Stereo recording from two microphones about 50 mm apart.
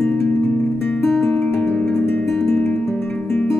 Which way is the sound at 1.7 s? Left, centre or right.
Centre.